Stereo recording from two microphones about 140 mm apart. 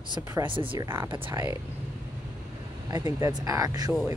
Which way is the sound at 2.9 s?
25° right (ahead or behind).